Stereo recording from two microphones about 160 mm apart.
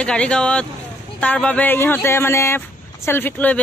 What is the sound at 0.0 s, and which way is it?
Speech, 5° left (ahead or behind).